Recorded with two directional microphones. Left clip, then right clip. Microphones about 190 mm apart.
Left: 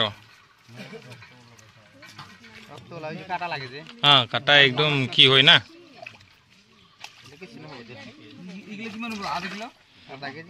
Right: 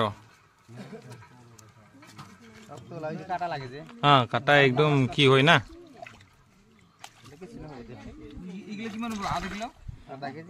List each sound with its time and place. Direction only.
2.9 s speech: 35° right (ahead or behind)
8.7 s speech: 5° right (ahead or behind)
10.0 s speech: 30° right (ahead or behind)